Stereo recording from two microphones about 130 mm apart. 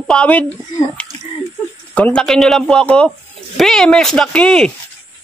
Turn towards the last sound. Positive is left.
turn(degrees=5)  # may be behind; listen again after turning